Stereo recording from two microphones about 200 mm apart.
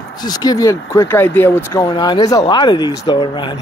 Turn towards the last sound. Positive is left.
turn(degrees=25)  # may be behind; listen again after turning